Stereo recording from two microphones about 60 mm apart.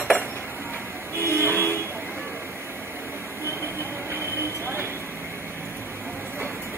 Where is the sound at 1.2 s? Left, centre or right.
Right.